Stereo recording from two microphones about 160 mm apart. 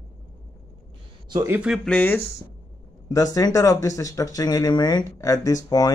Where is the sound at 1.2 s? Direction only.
25° right (ahead or behind).